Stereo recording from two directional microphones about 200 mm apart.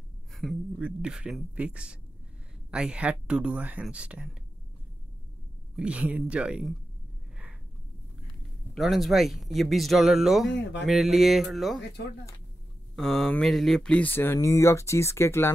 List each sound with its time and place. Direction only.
0.3 s speech: centre (ahead or behind)
5.8 s speech: 5° right (ahead or behind)
8.7 s speech: centre (ahead or behind)
10.5 s speech: 60° left (ahead or behind)
10.9 s speech: centre (ahead or behind)
12.9 s speech: centre (ahead or behind)